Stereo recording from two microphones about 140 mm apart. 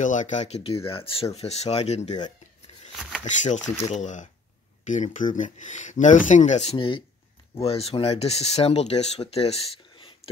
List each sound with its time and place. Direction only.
0.0 s speech: 60° left (ahead or behind)
3.3 s speech: 60° left (ahead or behind); by 10.1 s 45° left (ahead or behind)